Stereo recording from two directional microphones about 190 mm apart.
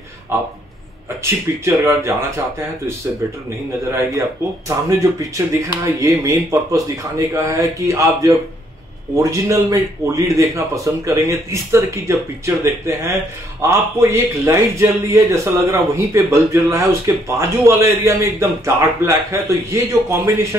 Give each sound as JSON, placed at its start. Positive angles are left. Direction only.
{"t": 1.2, "sound": "a man's voice", "side_deg": -15}
{"t": 4.6, "sound": "a man's voice", "side_deg": -15}